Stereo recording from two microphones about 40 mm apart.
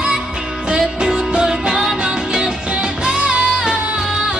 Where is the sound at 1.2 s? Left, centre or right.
Centre.